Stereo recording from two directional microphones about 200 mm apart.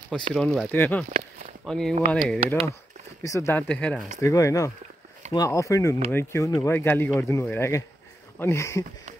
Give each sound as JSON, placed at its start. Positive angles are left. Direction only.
{"t": 0.1, "sound": "speech", "side_deg": 5}
{"t": 3.2, "sound": "speech", "side_deg": 15}
{"t": 4.2, "sound": "speech", "side_deg": 15}